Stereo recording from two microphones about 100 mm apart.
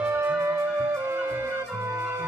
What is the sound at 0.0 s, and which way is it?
Music, 15° right (ahead or behind).